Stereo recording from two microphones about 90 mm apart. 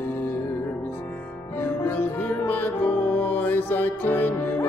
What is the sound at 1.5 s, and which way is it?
Music, 20° left (ahead or behind).